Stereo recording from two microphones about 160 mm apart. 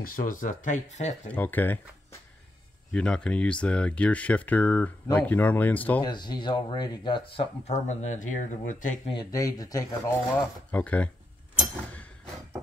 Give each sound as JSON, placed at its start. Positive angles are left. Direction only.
{"t": 0.0, "sound": "speech", "side_deg": 60}
{"t": 1.3, "sound": "speech", "side_deg": 10}
{"t": 2.9, "sound": "speech", "side_deg": 5}
{"t": 6.0, "sound": "speech", "side_deg": 25}
{"t": 9.0, "sound": "speech", "side_deg": 30}